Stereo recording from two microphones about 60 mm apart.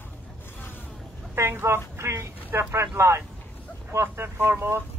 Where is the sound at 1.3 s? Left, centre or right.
Right.